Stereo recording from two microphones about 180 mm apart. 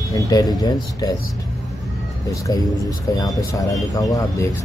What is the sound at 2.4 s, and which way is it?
Speech, 20° left (ahead or behind).